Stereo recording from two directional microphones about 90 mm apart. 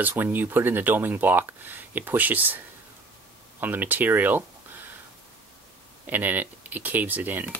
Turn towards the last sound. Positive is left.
turn(degrees=-20)  # may be behind; listen again after turning